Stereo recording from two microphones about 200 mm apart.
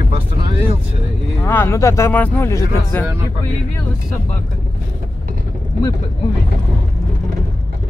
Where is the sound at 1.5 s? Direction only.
10° left (ahead or behind).